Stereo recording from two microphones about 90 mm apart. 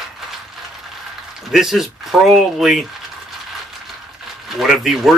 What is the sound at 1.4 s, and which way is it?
Speech, centre (ahead or behind).